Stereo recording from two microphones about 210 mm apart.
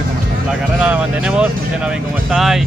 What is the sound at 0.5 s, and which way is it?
Speech, 5° right (ahead or behind).